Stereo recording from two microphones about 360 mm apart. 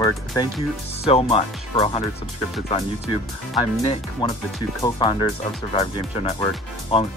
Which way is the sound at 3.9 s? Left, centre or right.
Centre.